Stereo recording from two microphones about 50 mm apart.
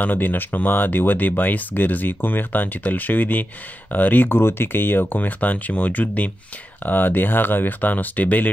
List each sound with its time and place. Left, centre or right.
0.0 s speech: left